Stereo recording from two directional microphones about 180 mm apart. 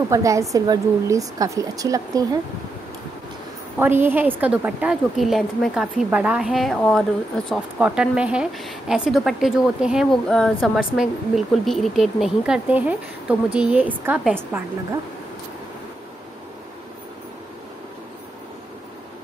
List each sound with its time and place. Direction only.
0.1 s a woman's voice: 15° right (ahead or behind)
3.7 s a woman's voice: 10° right (ahead or behind)